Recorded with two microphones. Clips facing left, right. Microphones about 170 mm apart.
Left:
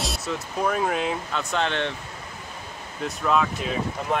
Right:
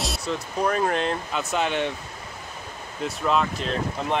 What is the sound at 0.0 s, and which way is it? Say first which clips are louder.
Speech: right 1 dB; centre (ahead or behind).